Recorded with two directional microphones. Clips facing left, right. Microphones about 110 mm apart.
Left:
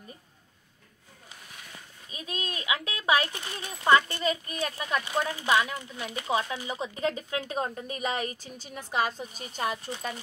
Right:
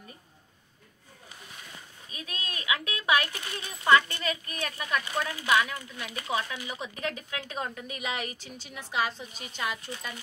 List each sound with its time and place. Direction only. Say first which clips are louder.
2.0 s speech: left 4 dB; 25° left (ahead or behind)
3.3 s speech: left 1 dB; 20° left (ahead or behind)
5.0 s speech: left 2 dB; 15° left (ahead or behind); by 10.2 s 35° left (ahead or behind)